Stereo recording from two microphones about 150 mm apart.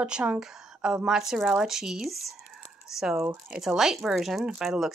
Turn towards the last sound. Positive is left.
turn(degrees=0)  # may be behind; listen again after turning